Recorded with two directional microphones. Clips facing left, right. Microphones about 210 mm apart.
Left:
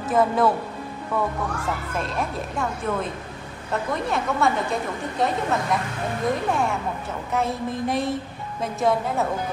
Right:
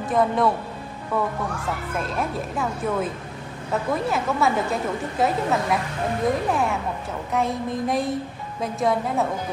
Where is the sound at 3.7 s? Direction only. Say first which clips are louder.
Right 2 dB; 5° right (ahead or behind).